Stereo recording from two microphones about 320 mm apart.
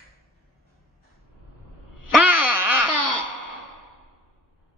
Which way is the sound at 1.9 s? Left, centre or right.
Left.